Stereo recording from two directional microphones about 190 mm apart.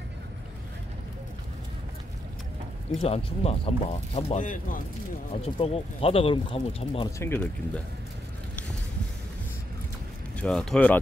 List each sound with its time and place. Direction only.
3.0 s speech: 30° left (ahead or behind)
5.3 s speech: 30° left (ahead or behind)
7.1 s speech: 15° left (ahead or behind)
10.3 s speech: 5° left (ahead or behind)